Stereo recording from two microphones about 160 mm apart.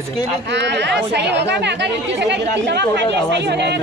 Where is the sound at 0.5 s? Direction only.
90° right.